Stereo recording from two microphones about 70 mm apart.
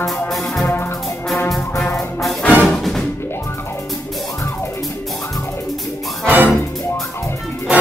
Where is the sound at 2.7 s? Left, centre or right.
Centre.